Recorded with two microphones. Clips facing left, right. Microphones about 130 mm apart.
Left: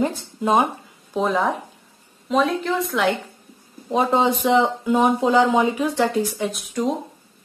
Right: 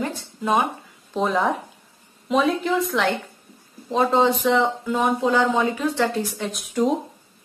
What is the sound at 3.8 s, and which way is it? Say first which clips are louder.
Speech: even; 10° left (ahead or behind).